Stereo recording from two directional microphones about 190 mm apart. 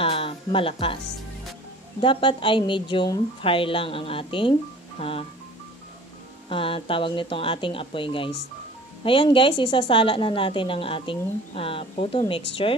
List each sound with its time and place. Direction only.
0.0 s a sound: 30° left (ahead or behind)
2.0 s a woman's voice: 25° left (ahead or behind)
6.5 s a woman's voice: 30° left (ahead or behind)